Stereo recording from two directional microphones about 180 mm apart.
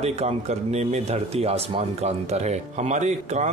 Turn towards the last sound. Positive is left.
turn(degrees=-40)  # may be behind; listen again after turning